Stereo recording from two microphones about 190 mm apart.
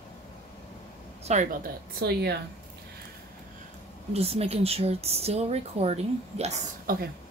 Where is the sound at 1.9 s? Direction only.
55° right (ahead or behind).